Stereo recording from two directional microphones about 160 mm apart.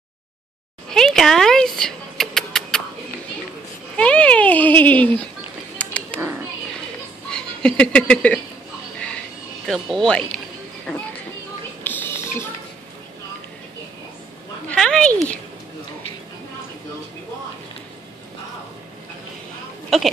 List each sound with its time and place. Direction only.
0.8 s a sound: 5° left (ahead or behind)
3.9 s a sound: 5° left (ahead or behind)
7.2 s speech: 5° left (ahead or behind)
9.7 s speech: 5° left (ahead or behind)
11.8 s music: 10° left (ahead or behind)
14.7 s a woman's voice: 5° left (ahead or behind)